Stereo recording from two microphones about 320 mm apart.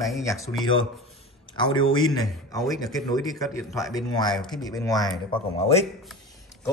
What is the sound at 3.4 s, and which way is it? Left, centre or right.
Speech, centre.